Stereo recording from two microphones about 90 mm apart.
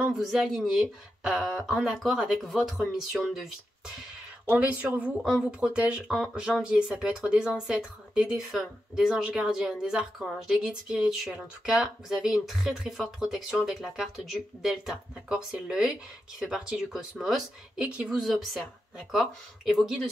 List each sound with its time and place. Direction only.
0.1 s speech: 5° right (ahead or behind)
4.5 s speech: 15° right (ahead or behind)
18.0 s speech: centre (ahead or behind)